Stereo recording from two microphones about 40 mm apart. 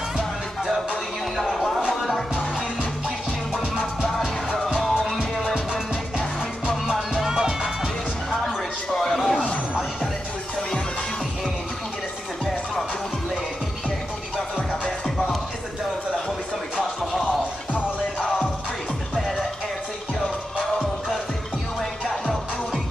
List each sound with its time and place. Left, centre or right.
1.3 s a sound: centre
3.5 s music: centre
5.5 s music: centre
14.7 s music: centre
16.7 s music: centre